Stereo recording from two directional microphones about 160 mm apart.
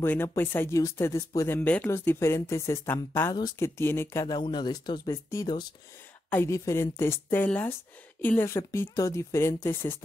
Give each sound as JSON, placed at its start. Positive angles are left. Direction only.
{"t": 0.0, "sound": "speech", "side_deg": 15}
{"t": 4.4, "sound": "speech", "side_deg": 30}